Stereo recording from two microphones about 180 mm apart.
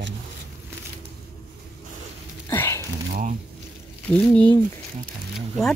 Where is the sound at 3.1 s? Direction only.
40° right (ahead or behind).